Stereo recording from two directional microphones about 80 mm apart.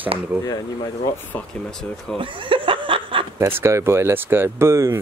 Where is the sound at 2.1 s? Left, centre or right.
Right.